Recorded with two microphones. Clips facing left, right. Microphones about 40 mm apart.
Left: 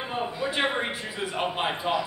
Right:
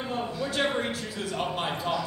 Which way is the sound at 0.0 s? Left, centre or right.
Left.